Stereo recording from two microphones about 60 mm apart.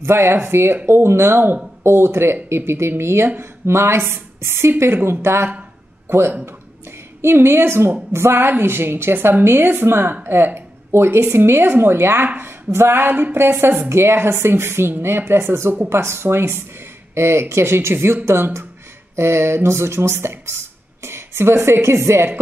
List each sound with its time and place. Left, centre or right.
0.0 s a woman's voice: right